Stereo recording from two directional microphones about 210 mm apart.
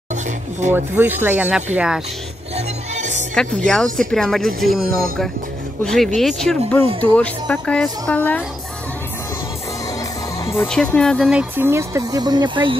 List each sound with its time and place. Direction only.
0.1 s speech: 35° right (ahead or behind)
0.7 s speech: 10° right (ahead or behind)
2.5 s music: 35° right (ahead or behind)
3.3 s speech: 5° left (ahead or behind)
4.8 s speech: 45° right (ahead or behind)
6.1 s speech: centre (ahead or behind)
10.4 s speech: 10° left (ahead or behind); by 12.7 s 20° right (ahead or behind)